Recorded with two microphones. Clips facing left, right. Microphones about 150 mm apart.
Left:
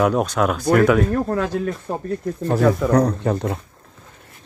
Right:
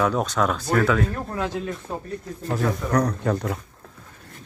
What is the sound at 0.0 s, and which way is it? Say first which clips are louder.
Speech: left 4 dB; 10° left (ahead or behind).